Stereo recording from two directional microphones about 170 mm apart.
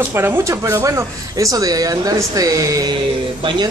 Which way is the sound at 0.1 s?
15° right (ahead or behind).